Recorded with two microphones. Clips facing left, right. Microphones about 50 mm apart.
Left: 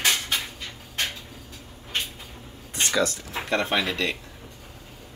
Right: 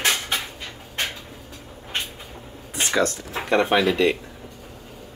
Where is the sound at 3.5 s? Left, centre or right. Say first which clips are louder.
Right 6 dB; centre.